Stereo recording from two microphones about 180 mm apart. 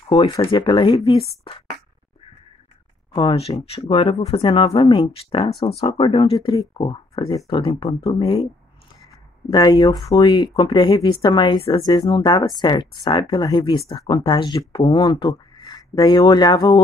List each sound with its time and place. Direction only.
0.1 s speech: 30° left (ahead or behind)
3.1 s speech: 30° left (ahead or behind)
9.5 s speech: 20° left (ahead or behind)